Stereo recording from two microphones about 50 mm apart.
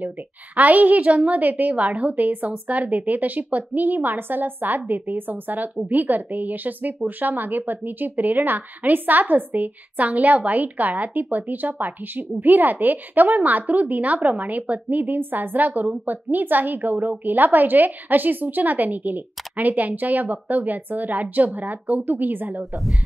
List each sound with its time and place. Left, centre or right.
0.6 s speech: right